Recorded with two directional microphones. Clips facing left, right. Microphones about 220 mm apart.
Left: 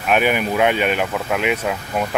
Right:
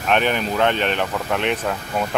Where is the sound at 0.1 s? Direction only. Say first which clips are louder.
Left 2 dB; 10° left (ahead or behind).